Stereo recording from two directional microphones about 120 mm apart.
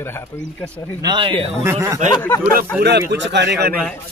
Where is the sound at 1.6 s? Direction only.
25° right (ahead or behind).